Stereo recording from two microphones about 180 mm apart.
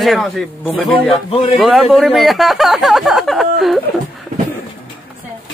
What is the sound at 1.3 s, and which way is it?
Speech, 35° left (ahead or behind).